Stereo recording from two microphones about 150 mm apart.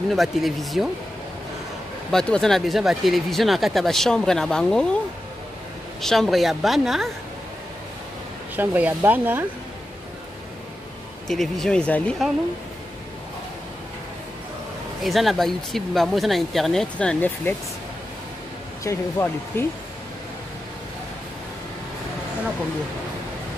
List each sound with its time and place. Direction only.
0.1 s speech: centre (ahead or behind)
2.0 s speech: 5° left (ahead or behind)
5.9 s speech: centre (ahead or behind)
8.5 s speech: 10° right (ahead or behind)
11.2 s speech: centre (ahead or behind)
15.0 s speech: centre (ahead or behind)
18.9 s speech: 15° left (ahead or behind)